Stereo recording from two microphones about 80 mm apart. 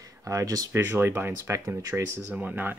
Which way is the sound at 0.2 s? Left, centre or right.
Right.